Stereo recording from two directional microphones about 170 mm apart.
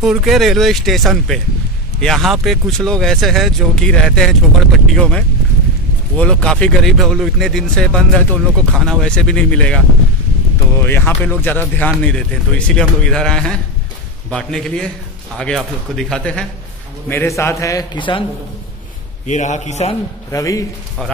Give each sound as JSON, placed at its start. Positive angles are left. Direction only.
{"t": 0.0, "sound": "speech", "side_deg": 0}
{"t": 10.8, "sound": "a man's voice", "side_deg": 10}
{"t": 19.2, "sound": "a man's voice", "side_deg": 45}
{"t": 20.2, "sound": "a man's voice", "side_deg": 20}